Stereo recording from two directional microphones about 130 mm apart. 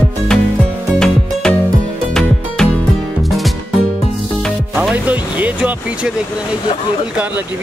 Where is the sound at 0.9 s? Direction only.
5° left (ahead or behind).